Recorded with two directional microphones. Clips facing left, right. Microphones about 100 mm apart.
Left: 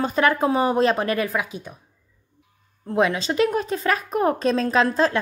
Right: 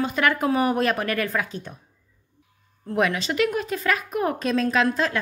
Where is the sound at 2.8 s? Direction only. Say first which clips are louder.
Left 2 dB; 25° left (ahead or behind).